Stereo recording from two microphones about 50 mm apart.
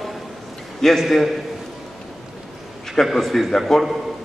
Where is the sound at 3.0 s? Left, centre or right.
Centre.